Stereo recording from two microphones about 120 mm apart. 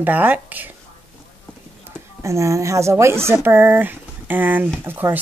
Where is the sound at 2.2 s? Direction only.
25° right (ahead or behind).